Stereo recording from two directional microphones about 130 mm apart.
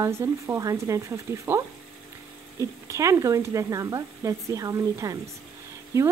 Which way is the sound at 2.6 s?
25° right (ahead or behind).